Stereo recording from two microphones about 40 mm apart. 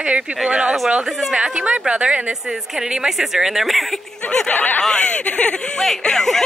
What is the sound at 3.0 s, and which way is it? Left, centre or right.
Speech, centre.